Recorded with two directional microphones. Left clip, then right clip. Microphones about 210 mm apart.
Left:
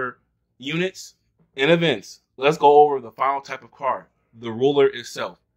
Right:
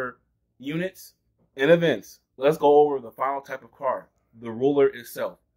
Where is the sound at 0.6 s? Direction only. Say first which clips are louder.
Left 5 dB; 25° left (ahead or behind).